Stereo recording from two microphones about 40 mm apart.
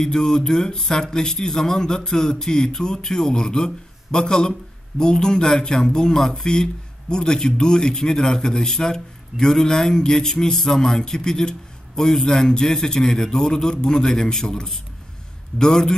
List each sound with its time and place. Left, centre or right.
0.0 s a man's voice: centre